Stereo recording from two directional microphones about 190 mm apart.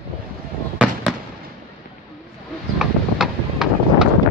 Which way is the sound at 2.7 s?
Centre (ahead or behind).